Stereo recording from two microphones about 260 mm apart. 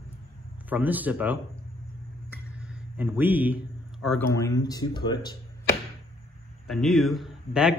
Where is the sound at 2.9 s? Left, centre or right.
Centre.